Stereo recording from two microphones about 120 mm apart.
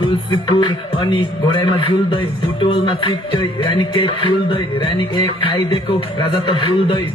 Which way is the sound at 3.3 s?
45° left (ahead or behind).